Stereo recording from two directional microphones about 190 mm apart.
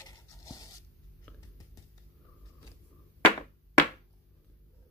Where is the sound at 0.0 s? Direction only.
20° left (ahead or behind).